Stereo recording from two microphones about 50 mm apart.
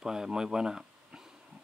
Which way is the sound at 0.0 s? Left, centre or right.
Centre.